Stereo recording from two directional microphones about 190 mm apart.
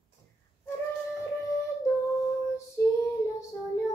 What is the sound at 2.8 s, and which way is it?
Child singing, 15° left (ahead or behind).